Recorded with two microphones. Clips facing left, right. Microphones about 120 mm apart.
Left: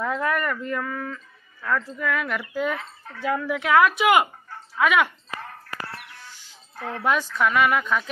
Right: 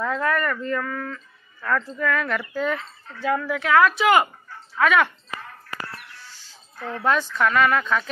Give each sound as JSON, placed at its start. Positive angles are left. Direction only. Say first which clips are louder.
{"t": 0.0, "sound": "speech", "louder": "right 1 dB", "side_deg": 15}
{"t": 7.0, "sound": "speech", "louder": "right 1 dB", "side_deg": 10}